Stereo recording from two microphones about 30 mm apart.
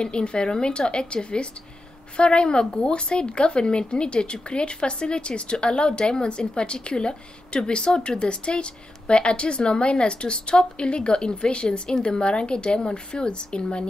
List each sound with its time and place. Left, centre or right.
0.0 s speech: left